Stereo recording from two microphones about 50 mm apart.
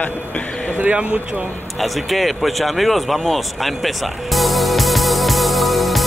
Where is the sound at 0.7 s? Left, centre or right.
Right.